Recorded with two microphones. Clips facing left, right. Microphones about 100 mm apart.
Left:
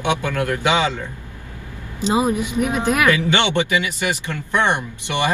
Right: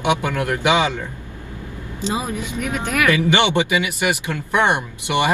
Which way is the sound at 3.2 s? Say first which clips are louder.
Right 2 dB; 15° right (ahead or behind).